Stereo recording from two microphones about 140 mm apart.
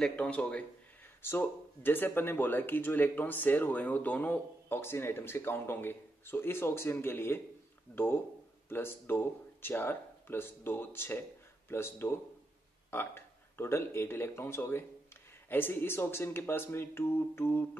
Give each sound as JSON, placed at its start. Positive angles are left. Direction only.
{"t": 0.0, "sound": "speech", "side_deg": 10}